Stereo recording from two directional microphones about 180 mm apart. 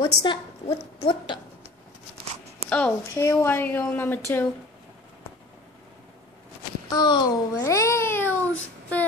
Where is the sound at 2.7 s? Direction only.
10° left (ahead or behind).